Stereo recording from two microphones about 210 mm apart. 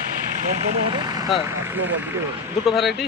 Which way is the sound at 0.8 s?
20° right (ahead or behind).